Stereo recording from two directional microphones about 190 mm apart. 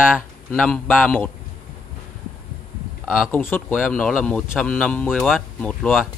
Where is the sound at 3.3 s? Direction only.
10° left (ahead or behind).